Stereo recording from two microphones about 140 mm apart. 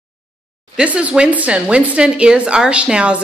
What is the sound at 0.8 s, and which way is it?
A woman's voice, 10° right (ahead or behind).